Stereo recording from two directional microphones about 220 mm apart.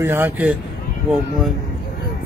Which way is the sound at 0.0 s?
10° right (ahead or behind).